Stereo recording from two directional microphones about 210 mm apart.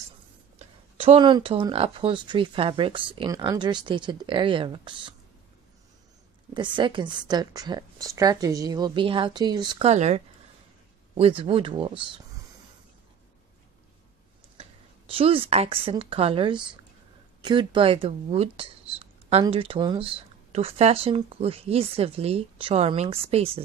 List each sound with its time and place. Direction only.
0.6 s speech: 25° right (ahead or behind)
6.5 s speech: 20° right (ahead or behind)
14.6 s speech: 25° right (ahead or behind)